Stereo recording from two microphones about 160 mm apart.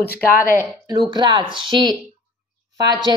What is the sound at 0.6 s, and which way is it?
Speech, 25° right (ahead or behind).